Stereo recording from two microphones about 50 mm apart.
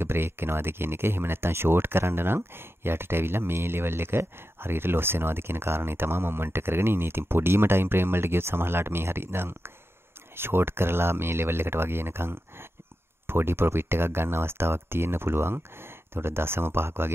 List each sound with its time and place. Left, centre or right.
0.0 s speech: right